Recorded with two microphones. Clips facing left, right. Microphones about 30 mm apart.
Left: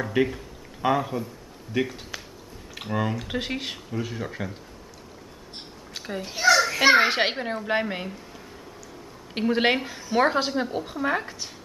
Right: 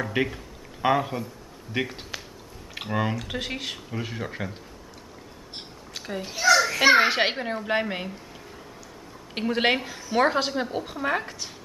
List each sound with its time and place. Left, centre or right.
0.1 s speech: centre
3.2 s a woman's voice: centre
3.9 s speech: centre
5.9 s speech: centre
6.3 s children playing: centre
6.6 s a woman's voice: centre
9.3 s a woman's voice: centre